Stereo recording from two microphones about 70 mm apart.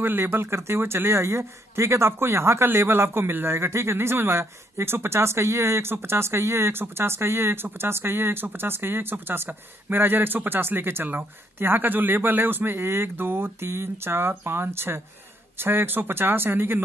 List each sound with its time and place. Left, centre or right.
0.0 s speech: right